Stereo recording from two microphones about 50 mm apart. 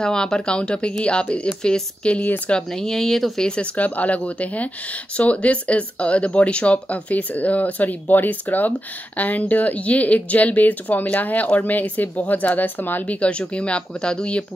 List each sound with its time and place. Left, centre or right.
0.0 s speech: centre
2.2 s speech: left
2.7 s speech: centre
3.7 s speech: left